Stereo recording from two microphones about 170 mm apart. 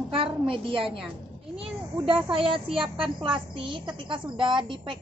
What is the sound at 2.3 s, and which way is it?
A woman's voice, 30° right (ahead or behind).